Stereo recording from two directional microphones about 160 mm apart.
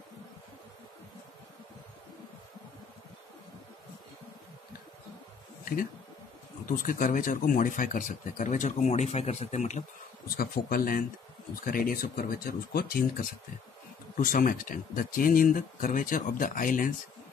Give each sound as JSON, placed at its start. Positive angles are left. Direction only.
{"t": 6.8, "sound": "speech", "side_deg": 55}
{"t": 10.3, "sound": "speech", "side_deg": 70}
{"t": 14.1, "sound": "speech", "side_deg": 60}